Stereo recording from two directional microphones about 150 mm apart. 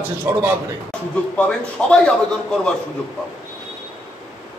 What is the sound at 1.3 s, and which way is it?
A man's voice, 5° left (ahead or behind).